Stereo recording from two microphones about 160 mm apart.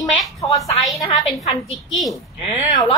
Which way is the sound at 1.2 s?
Centre (ahead or behind).